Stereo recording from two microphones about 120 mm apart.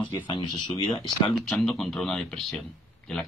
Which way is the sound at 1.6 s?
5° left (ahead or behind).